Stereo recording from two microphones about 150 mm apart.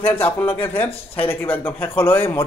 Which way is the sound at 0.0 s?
10° left (ahead or behind).